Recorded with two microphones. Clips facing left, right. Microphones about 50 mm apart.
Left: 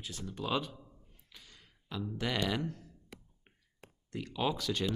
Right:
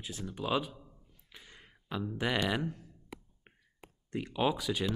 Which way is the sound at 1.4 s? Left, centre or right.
Right.